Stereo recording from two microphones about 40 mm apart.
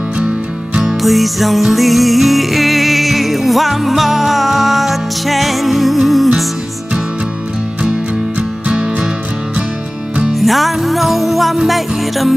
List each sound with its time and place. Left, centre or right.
0.8 s music: centre
8.4 s music: right
10.3 s music: centre